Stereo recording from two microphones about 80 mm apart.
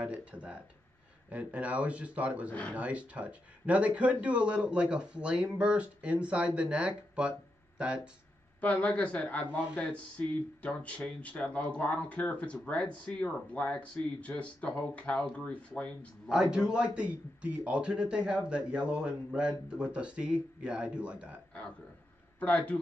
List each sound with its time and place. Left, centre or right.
0.0 s speech: centre
8.5 s a man's voice: centre
16.3 s speech: centre
22.4 s speech: centre